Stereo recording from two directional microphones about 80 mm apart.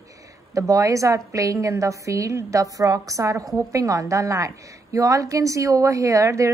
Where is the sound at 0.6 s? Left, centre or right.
Right.